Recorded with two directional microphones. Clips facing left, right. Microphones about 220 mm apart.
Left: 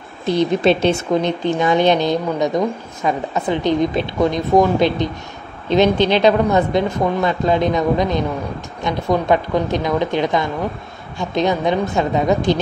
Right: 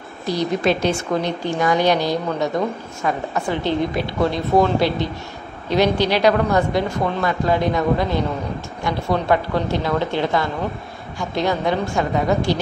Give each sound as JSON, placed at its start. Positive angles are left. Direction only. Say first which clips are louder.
{"t": 0.3, "sound": "a woman's voice", "louder": "left 4 dB", "side_deg": 25}